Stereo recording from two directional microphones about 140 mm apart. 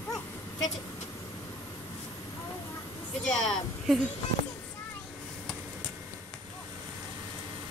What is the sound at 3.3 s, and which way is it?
Speech, centre (ahead or behind).